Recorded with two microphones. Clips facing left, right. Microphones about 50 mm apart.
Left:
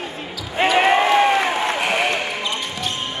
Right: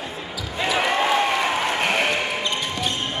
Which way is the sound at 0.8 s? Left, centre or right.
Left.